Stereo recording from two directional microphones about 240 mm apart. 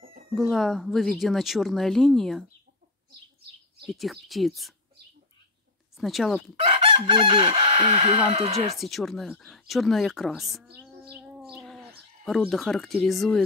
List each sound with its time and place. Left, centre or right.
0.3 s speech: centre
3.8 s speech: centre
5.9 s speech: centre
6.5 s chicken: right
8.7 s speech: centre